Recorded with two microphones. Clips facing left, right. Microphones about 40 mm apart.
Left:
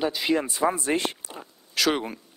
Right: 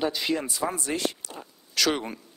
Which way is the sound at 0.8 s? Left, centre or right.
Left.